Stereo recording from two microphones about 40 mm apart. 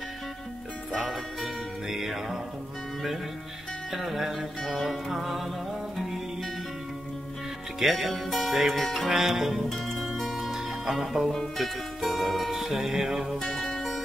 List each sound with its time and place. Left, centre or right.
1.0 s music: centre
3.9 s music: centre
7.8 s music: centre
9.1 s music: centre
9.7 s music: centre
10.5 s music: centre
11.3 s music: centre
13.4 s music: centre